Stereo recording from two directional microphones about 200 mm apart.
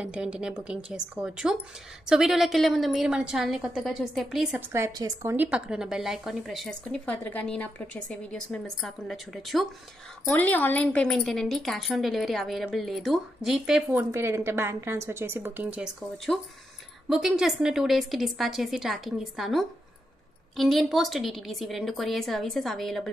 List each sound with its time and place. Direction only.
0.0 s a woman's voice: 5° right (ahead or behind)
4.7 s a woman's voice: 15° right (ahead or behind); by 23.1 s centre (ahead or behind)